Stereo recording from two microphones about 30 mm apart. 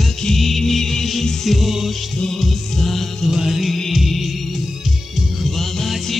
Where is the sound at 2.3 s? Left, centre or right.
Centre.